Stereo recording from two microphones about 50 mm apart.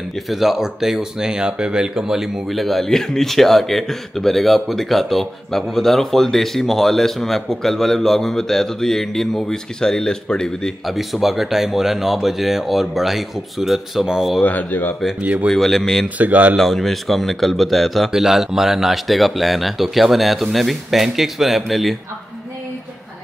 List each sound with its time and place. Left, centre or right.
0.3 s speech: centre
10.9 s speech: centre
14.4 s speech: left
15.5 s speech: centre
16.2 s speech: right
16.5 s speech: centre